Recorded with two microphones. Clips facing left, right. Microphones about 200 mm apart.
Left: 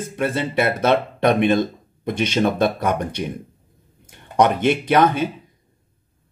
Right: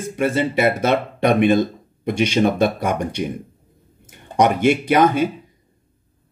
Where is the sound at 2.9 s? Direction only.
10° right (ahead or behind).